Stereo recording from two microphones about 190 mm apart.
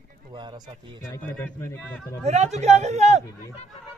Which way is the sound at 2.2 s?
35° right (ahead or behind).